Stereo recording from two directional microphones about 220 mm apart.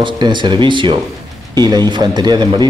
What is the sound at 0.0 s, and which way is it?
Speech, 20° right (ahead or behind).